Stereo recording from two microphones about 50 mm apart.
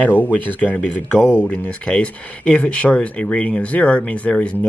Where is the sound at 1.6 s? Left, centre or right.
Left.